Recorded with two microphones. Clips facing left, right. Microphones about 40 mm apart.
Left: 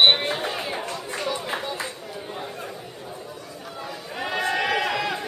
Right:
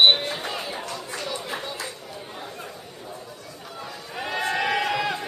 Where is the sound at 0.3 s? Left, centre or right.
Centre.